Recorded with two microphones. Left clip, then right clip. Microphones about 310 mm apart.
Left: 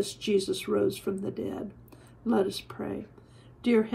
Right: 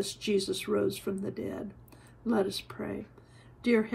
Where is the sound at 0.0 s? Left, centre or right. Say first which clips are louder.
Left 3 dB; centre.